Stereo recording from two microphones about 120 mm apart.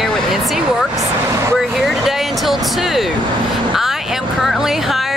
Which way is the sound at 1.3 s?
25° right (ahead or behind).